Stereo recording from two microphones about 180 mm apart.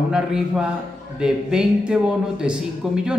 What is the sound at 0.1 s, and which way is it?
A man's voice, 5° right (ahead or behind).